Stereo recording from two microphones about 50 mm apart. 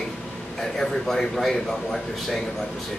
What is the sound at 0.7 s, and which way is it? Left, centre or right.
Speech, centre.